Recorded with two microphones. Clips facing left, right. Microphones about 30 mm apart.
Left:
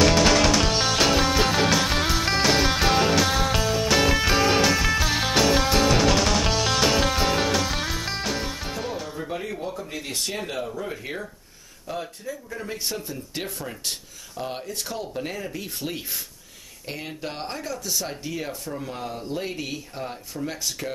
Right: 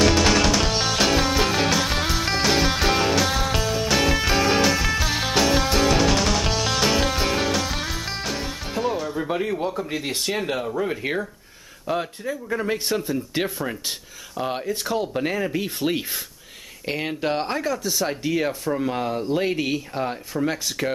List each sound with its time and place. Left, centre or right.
0.0 s music: centre
9.2 s music: centre
9.7 s speech: right
10.7 s speech: right
12.7 s speech: centre
15.0 s speech: right
20.0 s speech: right